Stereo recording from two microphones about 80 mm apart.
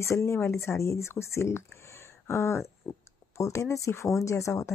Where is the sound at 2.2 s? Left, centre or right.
Left.